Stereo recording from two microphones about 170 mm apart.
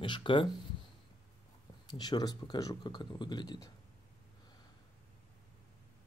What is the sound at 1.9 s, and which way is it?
Speech, 25° left (ahead or behind).